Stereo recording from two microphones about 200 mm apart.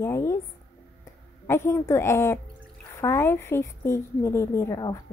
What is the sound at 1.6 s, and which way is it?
A woman's voice, 15° left (ahead or behind).